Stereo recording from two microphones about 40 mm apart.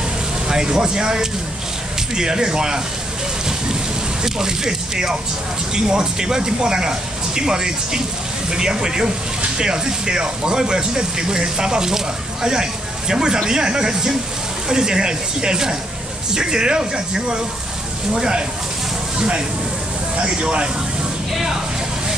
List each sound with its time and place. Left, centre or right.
0.5 s speech: centre
4.2 s speech: centre